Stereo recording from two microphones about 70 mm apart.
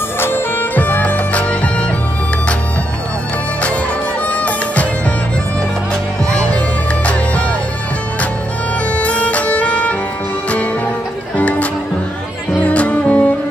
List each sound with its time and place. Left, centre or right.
0.2 s music: left
4.3 s music: centre
8.9 s music: centre
11.3 s music: left